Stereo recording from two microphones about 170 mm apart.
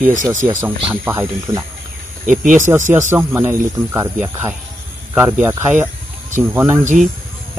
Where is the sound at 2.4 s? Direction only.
50° right (ahead or behind).